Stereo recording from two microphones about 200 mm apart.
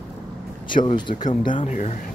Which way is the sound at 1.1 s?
40° left (ahead or behind).